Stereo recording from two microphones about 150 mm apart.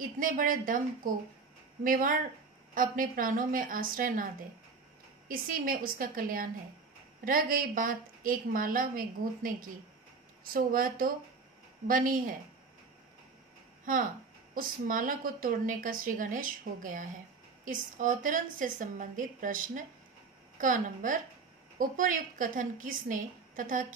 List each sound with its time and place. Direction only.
0.0 s a woman's voice: 65° right (ahead or behind)
14.5 s a woman's voice: 65° right (ahead or behind)